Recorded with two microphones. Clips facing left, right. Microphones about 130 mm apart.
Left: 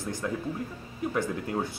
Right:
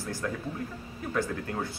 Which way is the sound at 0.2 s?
15° left (ahead or behind).